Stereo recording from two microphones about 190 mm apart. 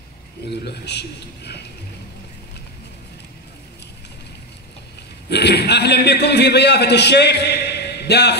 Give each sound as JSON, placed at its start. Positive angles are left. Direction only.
{"t": 0.5, "sound": "a man's voice", "side_deg": 60}
{"t": 5.3, "sound": "a man's voice", "side_deg": 60}